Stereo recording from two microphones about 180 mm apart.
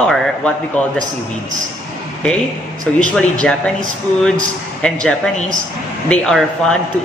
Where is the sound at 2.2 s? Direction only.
5° left (ahead or behind).